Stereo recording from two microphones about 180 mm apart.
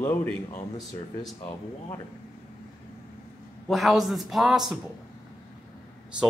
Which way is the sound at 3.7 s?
Centre (ahead or behind).